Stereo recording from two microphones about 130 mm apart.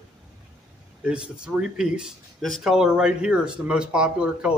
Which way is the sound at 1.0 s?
5° right (ahead or behind).